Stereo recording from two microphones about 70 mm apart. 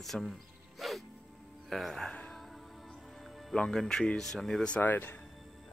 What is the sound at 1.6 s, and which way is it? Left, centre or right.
Speech, centre.